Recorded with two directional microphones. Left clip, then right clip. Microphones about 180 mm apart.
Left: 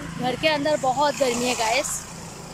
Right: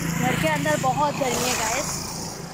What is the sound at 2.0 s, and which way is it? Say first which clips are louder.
Vehicle: right 5 dB; 5° right (ahead or behind).